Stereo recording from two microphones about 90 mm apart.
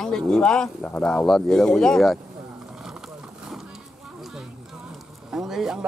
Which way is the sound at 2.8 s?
5° right (ahead or behind).